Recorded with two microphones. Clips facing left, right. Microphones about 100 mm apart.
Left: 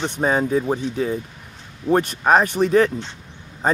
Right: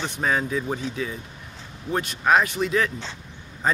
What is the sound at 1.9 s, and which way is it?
Speech, 40° left (ahead or behind).